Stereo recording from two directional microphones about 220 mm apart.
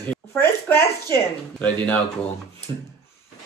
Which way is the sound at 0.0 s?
10° left (ahead or behind).